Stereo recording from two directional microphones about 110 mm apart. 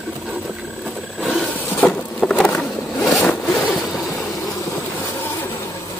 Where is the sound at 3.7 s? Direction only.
Centre (ahead or behind).